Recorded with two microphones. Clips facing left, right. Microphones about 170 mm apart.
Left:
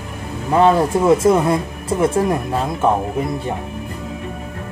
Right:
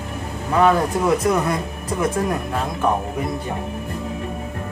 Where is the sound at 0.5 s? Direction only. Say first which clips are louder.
Left 3 dB; 25° left (ahead or behind).